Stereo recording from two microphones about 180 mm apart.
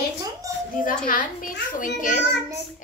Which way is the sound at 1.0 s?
50° left (ahead or behind).